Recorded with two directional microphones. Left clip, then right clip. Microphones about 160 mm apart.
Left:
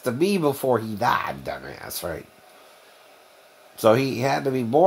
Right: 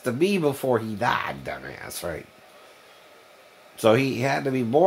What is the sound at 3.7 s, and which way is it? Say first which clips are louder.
Speech: left 1 dB; 15° left (ahead or behind).